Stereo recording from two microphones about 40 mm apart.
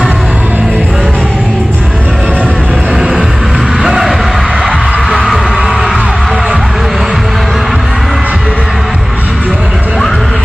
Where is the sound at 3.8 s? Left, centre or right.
Centre.